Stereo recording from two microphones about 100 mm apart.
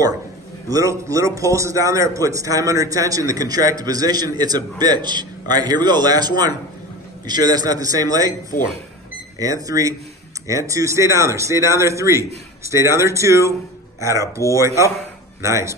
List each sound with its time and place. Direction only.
0.7 s a man's voice: 35° right (ahead or behind)
9.4 s a man's voice: 35° right (ahead or behind)